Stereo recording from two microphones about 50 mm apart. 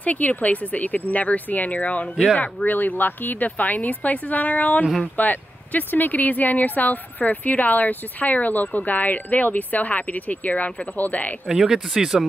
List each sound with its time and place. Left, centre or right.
0.0 s speech: left
11.4 s speech: centre